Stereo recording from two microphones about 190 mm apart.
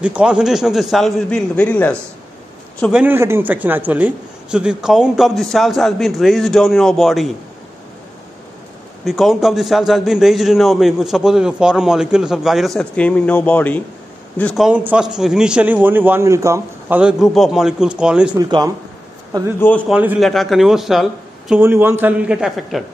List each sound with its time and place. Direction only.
0.0 s a man's voice: 5° right (ahead or behind)
2.9 s a man's voice: 10° right (ahead or behind)
9.0 s a man's voice: centre (ahead or behind)
17.0 s a man's voice: centre (ahead or behind)
18.4 s speech: 20° right (ahead or behind)
19.9 s a man's voice: 5° right (ahead or behind)